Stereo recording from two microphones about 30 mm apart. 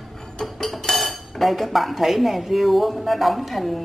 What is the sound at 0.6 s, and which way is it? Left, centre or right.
Dishes, centre.